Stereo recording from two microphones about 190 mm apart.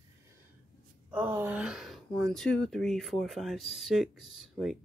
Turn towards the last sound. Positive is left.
turn(degrees=0)  # may be behind; listen again after turning